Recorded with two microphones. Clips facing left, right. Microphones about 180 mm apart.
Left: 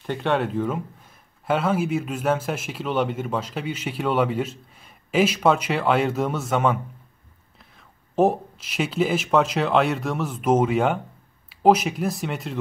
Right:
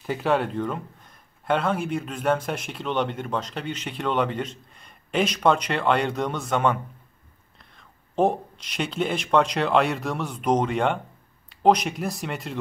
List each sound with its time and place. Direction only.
0.0 s speech: 5° right (ahead or behind)